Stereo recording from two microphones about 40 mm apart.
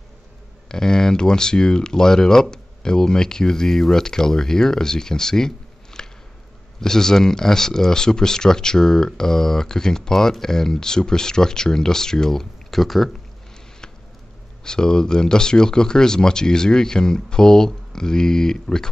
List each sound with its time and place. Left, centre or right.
0.7 s speech: centre
6.0 s a sound: centre
6.8 s speech: centre
14.6 s speech: centre